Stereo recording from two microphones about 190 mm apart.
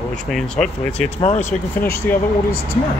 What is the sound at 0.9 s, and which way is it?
Speech, 35° left (ahead or behind).